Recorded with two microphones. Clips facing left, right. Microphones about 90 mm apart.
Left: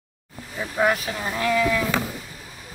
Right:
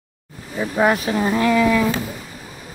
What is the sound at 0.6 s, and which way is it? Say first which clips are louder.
Speech: right 4 dB; 15° right (ahead or behind).